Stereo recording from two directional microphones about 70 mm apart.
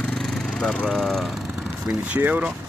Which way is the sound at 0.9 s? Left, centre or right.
Centre.